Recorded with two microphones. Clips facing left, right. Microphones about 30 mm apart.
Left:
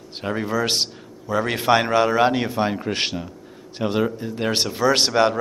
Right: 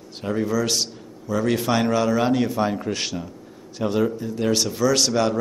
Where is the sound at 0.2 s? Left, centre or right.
Left.